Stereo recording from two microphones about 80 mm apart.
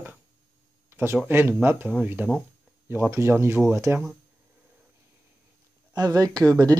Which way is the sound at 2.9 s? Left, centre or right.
Right.